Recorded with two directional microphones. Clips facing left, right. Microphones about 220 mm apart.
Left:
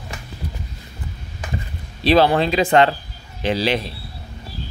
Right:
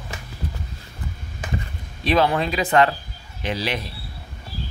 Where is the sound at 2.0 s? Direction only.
30° left (ahead or behind).